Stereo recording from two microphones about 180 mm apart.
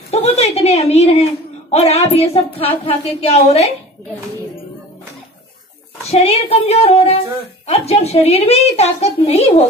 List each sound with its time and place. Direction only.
0.1 s a woman's voice: 35° left (ahead or behind)
6.0 s a woman's voice: 35° left (ahead or behind)